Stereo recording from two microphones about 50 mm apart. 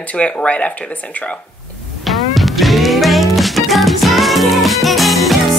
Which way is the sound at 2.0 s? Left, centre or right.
Centre.